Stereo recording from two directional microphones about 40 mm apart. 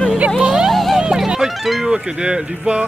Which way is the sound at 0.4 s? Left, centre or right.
Centre.